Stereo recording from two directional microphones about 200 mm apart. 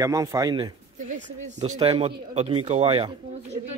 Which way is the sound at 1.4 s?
35° right (ahead or behind).